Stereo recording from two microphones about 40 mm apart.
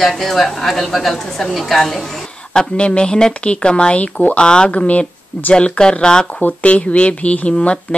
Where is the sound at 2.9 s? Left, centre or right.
Left.